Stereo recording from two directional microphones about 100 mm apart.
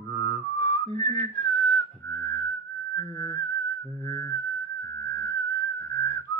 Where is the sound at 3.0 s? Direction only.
30° left (ahead or behind).